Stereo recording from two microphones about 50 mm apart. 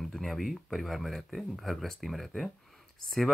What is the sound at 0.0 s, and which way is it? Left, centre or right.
Speech, centre.